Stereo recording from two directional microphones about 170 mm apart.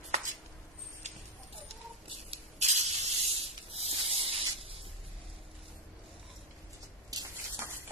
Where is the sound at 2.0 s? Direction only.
40° right (ahead or behind).